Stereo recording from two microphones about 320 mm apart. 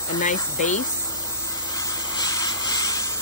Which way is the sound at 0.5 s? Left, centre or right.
Left.